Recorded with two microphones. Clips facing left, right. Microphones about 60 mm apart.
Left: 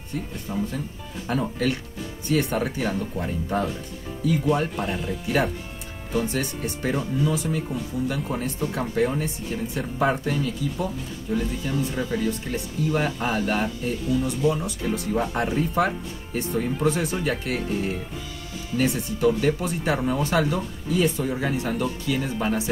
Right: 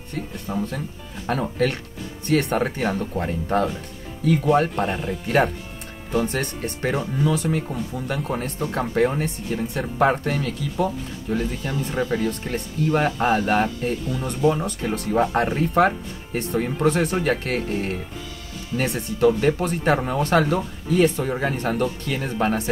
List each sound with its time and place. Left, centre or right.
0.1 s speech: right
4.2 s speech: right